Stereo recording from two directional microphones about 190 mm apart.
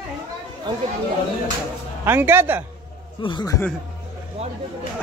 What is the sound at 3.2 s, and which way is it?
Speech, 20° left (ahead or behind).